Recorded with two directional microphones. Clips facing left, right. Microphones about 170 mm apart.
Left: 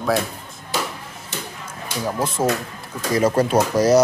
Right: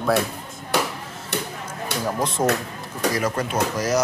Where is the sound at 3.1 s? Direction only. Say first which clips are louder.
Left 10 dB; 30° left (ahead or behind).